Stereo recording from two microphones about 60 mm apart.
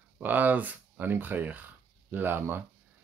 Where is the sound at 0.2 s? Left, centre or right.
Right.